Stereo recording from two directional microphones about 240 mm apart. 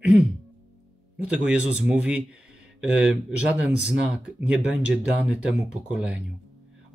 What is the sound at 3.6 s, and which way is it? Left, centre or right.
Speech, centre.